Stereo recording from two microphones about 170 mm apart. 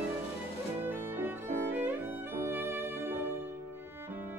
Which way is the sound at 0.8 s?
10° right (ahead or behind).